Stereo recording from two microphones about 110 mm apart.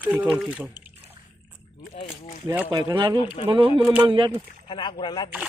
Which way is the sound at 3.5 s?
50° right (ahead or behind).